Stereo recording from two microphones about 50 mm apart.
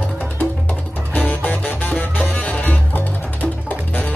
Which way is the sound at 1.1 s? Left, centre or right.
Left.